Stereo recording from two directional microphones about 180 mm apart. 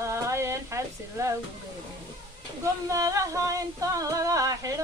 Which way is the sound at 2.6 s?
20° right (ahead or behind).